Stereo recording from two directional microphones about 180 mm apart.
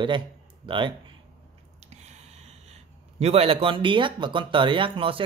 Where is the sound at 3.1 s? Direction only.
35° right (ahead or behind).